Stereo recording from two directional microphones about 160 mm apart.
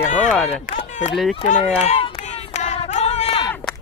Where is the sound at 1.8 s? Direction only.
45° left (ahead or behind).